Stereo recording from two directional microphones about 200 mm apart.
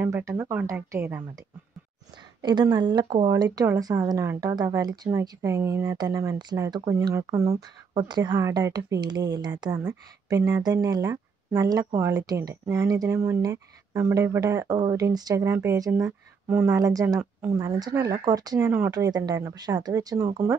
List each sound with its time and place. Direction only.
0.0 s speech: 10° right (ahead or behind)
2.4 s speech: 20° right (ahead or behind)